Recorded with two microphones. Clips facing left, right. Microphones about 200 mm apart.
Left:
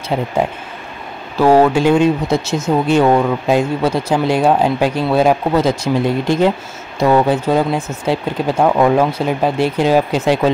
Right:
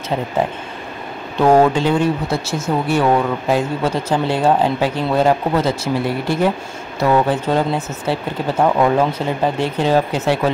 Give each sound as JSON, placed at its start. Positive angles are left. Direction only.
{"t": 1.3, "sound": "speech", "side_deg": 5}